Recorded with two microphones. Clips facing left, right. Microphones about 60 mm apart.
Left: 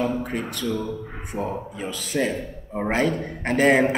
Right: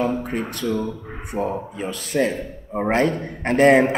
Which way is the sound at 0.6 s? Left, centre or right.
Right.